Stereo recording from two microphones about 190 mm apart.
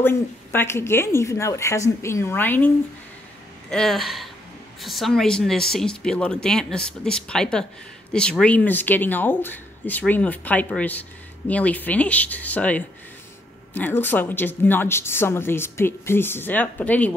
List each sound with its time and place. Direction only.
0.0 s speech: 10° left (ahead or behind)
3.7 s speech: centre (ahead or behind)